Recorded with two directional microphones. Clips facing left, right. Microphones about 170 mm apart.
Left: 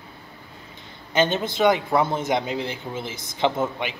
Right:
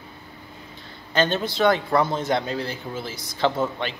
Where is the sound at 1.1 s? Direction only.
20° left (ahead or behind).